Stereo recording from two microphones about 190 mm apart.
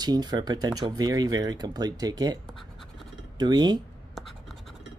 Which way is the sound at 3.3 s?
20° right (ahead or behind).